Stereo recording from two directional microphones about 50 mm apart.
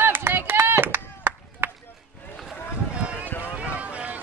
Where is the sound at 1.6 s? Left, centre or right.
Right.